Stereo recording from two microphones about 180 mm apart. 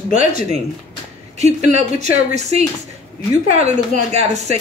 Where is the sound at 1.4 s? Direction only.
40° right (ahead or behind).